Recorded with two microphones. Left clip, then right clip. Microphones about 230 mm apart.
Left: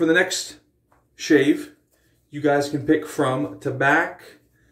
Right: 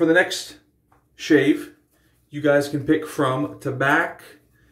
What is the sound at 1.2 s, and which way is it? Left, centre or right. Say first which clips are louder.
Mantra: even; centre.